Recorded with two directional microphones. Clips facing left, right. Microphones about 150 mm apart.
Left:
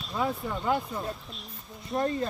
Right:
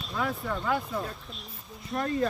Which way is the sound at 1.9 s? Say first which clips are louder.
Left 3 dB; 30° left (ahead or behind).